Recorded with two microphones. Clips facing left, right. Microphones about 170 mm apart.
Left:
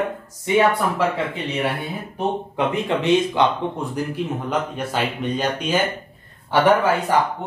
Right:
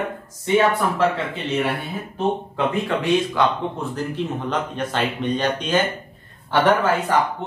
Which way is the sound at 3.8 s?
10° left (ahead or behind).